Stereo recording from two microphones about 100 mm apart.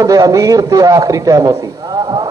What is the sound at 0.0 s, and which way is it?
A man's voice, 40° right (ahead or behind).